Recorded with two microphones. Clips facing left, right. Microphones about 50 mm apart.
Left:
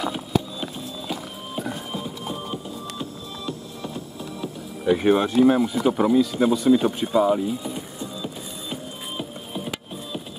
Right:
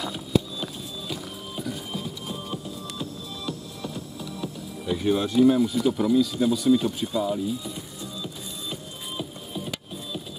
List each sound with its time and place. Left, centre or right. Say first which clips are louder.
0.0 s music: left 1 dB; left
1.9 s music: left 3 dB; left
4.9 s a sound: left 3 dB; left